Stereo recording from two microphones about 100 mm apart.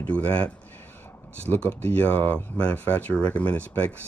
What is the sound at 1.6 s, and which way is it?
Speech, 15° left (ahead or behind).